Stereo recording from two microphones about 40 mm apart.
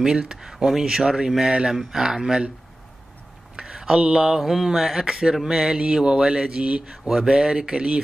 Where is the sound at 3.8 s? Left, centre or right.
Centre.